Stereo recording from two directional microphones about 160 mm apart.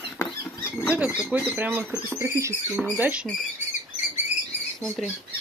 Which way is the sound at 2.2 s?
20° right (ahead or behind).